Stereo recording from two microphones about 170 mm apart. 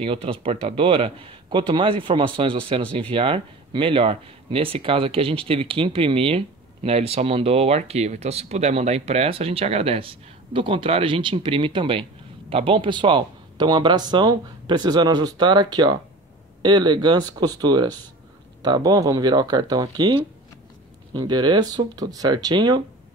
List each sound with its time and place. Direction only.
0.0 s speech: 35° right (ahead or behind)